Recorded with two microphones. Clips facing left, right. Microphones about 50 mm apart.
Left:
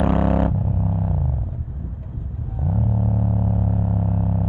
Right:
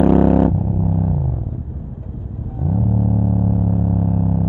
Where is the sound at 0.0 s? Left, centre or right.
Centre.